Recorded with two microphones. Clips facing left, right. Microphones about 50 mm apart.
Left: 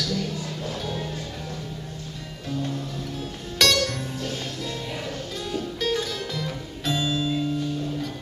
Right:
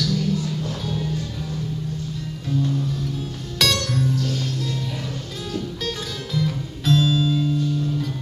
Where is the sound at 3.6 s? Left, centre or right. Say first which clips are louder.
Even; centre.